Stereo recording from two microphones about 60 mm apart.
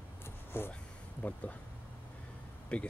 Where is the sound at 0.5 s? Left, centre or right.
Left.